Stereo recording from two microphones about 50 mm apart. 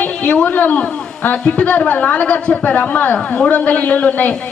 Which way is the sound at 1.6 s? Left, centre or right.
Left.